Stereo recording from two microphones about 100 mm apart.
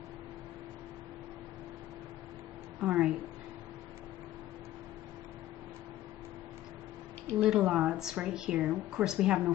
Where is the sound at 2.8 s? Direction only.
10° right (ahead or behind).